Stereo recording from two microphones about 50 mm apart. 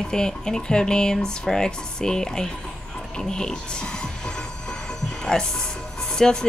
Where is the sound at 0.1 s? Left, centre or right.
Centre.